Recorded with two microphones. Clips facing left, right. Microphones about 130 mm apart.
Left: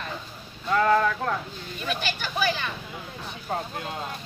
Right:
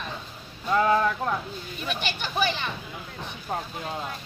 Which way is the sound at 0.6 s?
15° right (ahead or behind).